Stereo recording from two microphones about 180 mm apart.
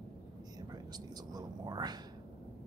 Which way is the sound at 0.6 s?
20° right (ahead or behind).